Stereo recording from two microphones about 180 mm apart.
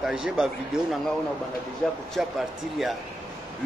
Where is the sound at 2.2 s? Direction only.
Centre (ahead or behind).